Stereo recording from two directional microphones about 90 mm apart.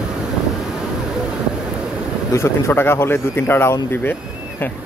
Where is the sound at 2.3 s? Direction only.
30° left (ahead or behind).